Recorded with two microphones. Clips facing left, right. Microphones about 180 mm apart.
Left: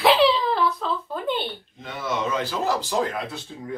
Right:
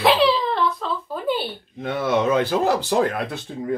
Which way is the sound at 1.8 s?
60° right (ahead or behind).